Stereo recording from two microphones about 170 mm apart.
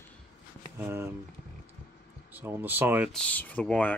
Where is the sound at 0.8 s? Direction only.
15° right (ahead or behind).